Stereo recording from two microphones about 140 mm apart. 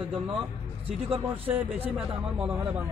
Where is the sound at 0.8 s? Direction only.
40° right (ahead or behind).